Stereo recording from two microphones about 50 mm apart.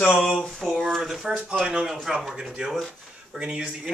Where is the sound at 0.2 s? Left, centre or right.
Centre.